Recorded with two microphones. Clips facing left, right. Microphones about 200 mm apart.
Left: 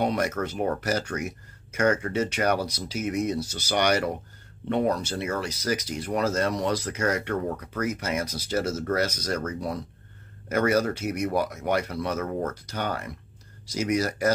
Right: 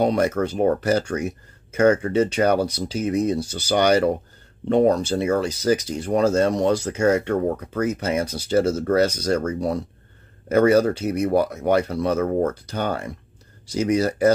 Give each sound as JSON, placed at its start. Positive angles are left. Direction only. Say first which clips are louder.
{"t": 0.0, "sound": "speech", "louder": "right 6 dB", "side_deg": -30}